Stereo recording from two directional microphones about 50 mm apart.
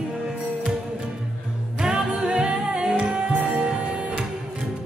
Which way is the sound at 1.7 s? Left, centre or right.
Centre.